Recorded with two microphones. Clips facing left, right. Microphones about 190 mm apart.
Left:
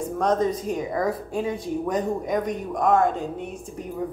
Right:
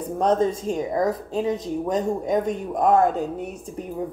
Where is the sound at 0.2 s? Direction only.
30° right (ahead or behind).